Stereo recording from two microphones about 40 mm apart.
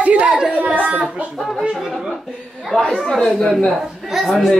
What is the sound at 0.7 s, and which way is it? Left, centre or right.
Speech, right.